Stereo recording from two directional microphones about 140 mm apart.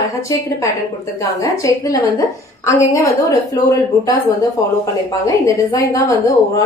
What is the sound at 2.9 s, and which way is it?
A woman's voice, 25° left (ahead or behind).